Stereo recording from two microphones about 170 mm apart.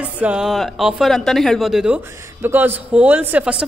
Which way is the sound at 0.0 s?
5° right (ahead or behind).